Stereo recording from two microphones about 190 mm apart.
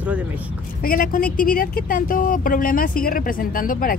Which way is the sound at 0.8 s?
50° left (ahead or behind).